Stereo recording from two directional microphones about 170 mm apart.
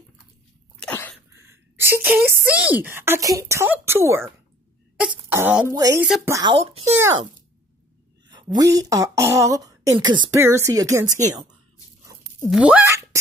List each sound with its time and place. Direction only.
1.3 s speech: 15° right (ahead or behind)
6.5 s speech: 35° right (ahead or behind)
6.8 s speech: 15° right (ahead or behind)
8.3 s speech: 25° right (ahead or behind)
12.1 s a sound: 20° right (ahead or behind)
12.4 s speech: 5° right (ahead or behind)